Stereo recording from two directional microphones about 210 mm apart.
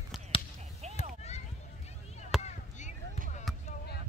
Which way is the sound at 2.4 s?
35° left (ahead or behind).